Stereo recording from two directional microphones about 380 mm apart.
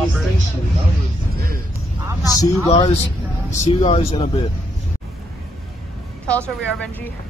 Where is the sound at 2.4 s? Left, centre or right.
Centre.